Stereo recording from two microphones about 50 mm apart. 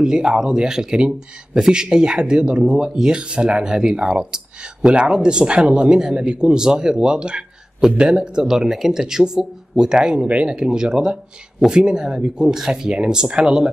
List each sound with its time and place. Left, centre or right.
0.0 s speech: centre